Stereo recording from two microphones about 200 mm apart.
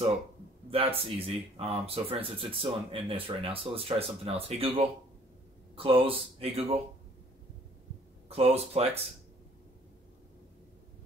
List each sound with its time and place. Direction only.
0.7 s speech: 30° right (ahead or behind)
8.3 s speech: 30° right (ahead or behind)